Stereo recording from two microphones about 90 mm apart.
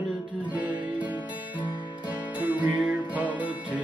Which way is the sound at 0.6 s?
15° right (ahead or behind).